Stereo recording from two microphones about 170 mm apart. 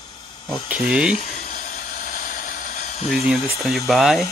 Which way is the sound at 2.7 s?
40° left (ahead or behind).